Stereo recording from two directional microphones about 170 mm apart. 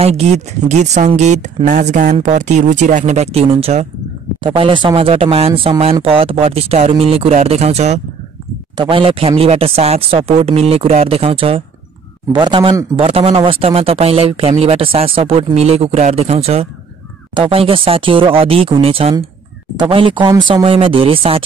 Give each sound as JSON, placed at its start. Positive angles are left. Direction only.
{"t": 0.0, "sound": "a man's voice", "side_deg": -40}